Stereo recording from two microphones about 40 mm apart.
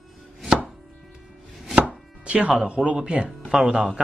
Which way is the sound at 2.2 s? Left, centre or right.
Right.